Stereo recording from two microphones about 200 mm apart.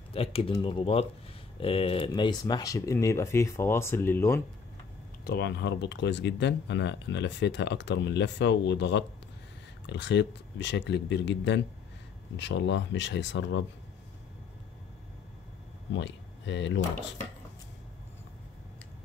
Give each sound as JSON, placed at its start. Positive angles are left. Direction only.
{"t": 0.1, "sound": "speech", "side_deg": 30}
{"t": 5.2, "sound": "speech", "side_deg": 55}
{"t": 15.9, "sound": "speech", "side_deg": 65}